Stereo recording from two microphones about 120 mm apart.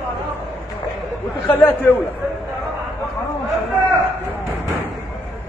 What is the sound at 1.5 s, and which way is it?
Speech, 15° left (ahead or behind).